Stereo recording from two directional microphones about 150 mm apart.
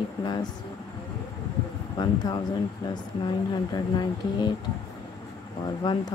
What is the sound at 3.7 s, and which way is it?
Speech, 30° left (ahead or behind).